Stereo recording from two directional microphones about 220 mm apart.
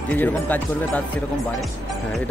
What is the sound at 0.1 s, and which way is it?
Speech, 5° left (ahead or behind).